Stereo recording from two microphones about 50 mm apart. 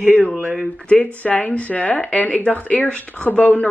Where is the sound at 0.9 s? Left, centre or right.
Left.